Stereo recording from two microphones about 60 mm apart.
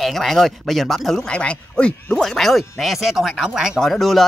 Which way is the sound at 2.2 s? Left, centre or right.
Centre.